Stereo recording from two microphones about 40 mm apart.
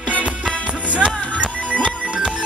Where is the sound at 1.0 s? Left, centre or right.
Left.